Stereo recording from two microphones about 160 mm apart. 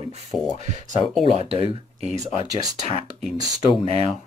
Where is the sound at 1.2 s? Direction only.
35° right (ahead or behind).